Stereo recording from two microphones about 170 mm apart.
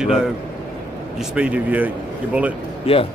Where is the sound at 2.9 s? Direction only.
35° left (ahead or behind).